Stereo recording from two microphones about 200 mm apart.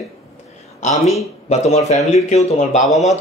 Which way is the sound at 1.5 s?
35° left (ahead or behind).